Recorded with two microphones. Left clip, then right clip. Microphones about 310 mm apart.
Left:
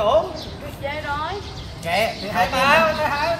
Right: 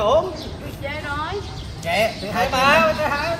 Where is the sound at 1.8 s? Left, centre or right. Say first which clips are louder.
Right 1 dB; centre.